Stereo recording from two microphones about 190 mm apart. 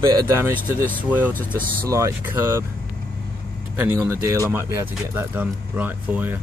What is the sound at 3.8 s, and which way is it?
Speech, 10° right (ahead or behind).